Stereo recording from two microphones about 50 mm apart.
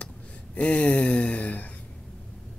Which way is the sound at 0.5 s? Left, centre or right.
Left.